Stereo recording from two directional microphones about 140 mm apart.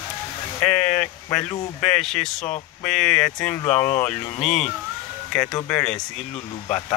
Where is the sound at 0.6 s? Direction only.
5° left (ahead or behind).